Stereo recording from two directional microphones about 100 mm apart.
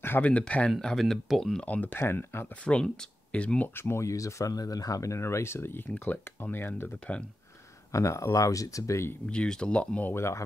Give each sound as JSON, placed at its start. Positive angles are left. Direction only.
{"t": 0.0, "sound": "speech", "side_deg": 15}
{"t": 2.6, "sound": "speech", "side_deg": 10}
{"t": 7.9, "sound": "speech", "side_deg": 30}
{"t": 9.2, "sound": "speech", "side_deg": 10}